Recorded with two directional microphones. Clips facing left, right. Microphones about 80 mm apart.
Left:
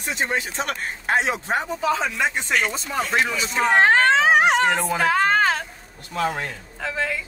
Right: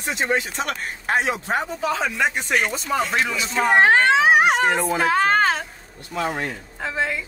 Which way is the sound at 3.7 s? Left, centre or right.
Centre.